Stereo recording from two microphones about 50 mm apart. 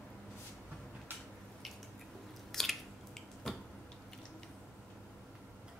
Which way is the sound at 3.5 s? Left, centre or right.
Centre.